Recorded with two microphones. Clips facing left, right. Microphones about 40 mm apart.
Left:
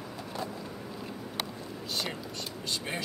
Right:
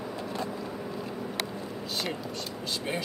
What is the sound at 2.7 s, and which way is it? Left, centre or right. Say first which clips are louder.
Speech: right 2 dB; centre.